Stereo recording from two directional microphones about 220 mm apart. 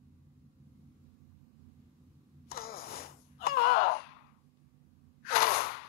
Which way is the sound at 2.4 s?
45° left (ahead or behind).